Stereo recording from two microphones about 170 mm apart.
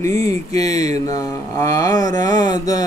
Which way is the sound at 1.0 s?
20° left (ahead or behind).